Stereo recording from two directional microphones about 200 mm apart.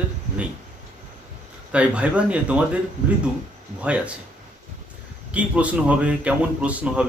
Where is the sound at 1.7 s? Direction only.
5° right (ahead or behind).